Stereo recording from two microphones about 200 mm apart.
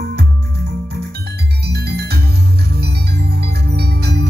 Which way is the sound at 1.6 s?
55° right (ahead or behind).